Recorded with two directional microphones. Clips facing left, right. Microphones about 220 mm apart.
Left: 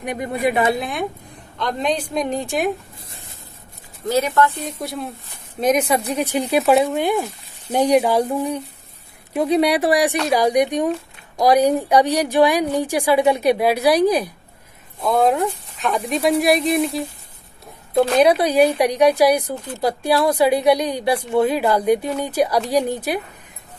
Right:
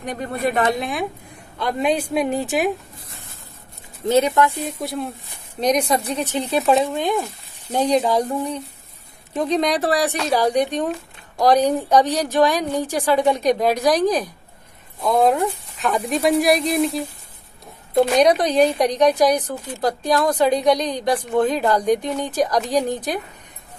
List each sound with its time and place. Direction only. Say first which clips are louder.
0.0 s speech: left 2 dB; 10° left (ahead or behind); by 2.7 s 5° right (ahead or behind)
4.1 s speech: right 1 dB; 20° right (ahead or behind)
4.5 s speech: right 1 dB; centre (ahead or behind)